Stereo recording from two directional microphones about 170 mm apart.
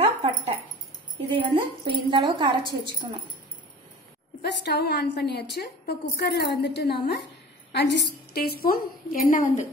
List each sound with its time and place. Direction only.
0.0 s dog: 35° right (ahead or behind)
1.9 s a woman's voice: 30° right (ahead or behind)
4.4 s a woman's voice: 80° left
7.7 s a woman's voice: 90° left; by 9.7 s 50° left (ahead or behind)